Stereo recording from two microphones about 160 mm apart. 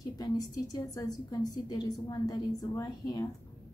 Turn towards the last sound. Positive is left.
turn(degrees=25)  # may be behind; listen again after turning